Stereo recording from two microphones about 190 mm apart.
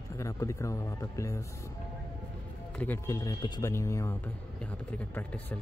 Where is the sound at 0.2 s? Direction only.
15° left (ahead or behind).